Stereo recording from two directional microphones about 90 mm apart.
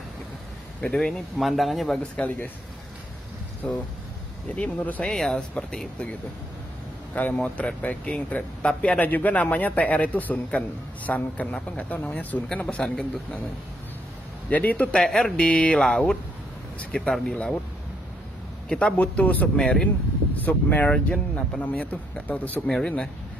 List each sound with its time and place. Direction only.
0.8 s speech: 5° left (ahead or behind)
2.1 s speech: 15° left (ahead or behind)
3.6 s speech: 10° left (ahead or behind)
5.0 s speech: 5° left (ahead or behind)
7.2 s speech: 15° left (ahead or behind)
14.5 s speech: 20° left (ahead or behind)
18.7 s speech: 10° left (ahead or behind)